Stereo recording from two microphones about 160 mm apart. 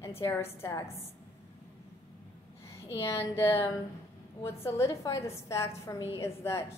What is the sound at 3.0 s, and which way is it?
A woman's voice, 15° left (ahead or behind).